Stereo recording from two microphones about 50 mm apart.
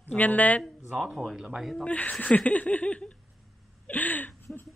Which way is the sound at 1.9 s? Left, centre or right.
Left.